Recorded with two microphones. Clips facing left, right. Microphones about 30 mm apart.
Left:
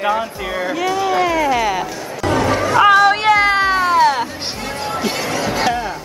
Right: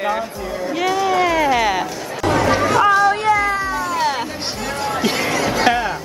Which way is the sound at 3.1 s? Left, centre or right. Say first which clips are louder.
Left 3 dB; left.